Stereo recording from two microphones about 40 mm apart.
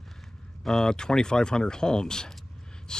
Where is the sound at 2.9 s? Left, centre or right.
Centre.